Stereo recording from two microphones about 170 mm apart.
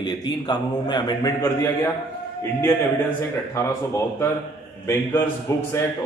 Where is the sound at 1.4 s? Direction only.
15° left (ahead or behind).